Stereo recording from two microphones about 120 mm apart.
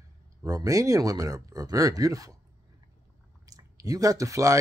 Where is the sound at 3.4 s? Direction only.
30° right (ahead or behind).